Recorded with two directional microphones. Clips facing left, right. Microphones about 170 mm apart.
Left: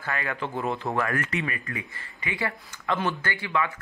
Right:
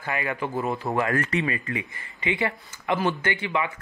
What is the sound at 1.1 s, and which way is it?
Speech, 35° right (ahead or behind).